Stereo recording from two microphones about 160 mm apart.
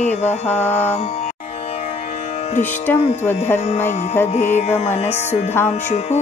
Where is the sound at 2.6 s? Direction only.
15° left (ahead or behind).